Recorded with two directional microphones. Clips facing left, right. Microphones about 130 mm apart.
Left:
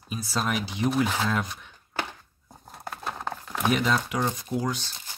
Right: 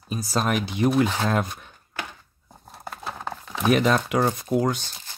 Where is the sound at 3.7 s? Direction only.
60° right (ahead or behind).